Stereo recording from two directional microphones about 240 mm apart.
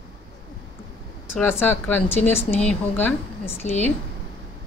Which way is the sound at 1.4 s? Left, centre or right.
Centre.